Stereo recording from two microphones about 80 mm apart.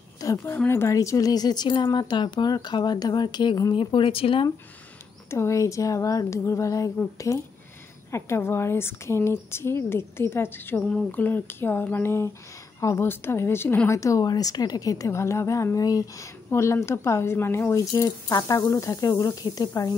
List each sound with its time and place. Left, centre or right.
0.2 s a woman's voice: left
0.7 s speech: left
0.9 s speech: left
3.7 s speech: left
5.3 s speech: left
10.9 s speech: centre; by 14.2 s left
14.2 s a woman's voice: left
16.4 s speech: left